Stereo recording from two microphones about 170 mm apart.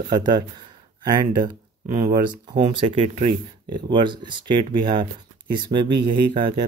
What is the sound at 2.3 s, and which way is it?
Speech, 30° right (ahead or behind).